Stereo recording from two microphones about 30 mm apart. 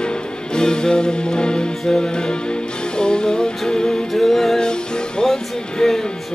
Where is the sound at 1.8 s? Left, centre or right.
Centre.